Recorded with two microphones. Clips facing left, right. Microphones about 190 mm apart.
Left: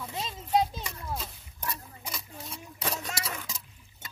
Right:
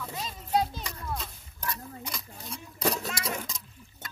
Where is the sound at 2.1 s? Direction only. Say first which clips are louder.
Even; centre (ahead or behind).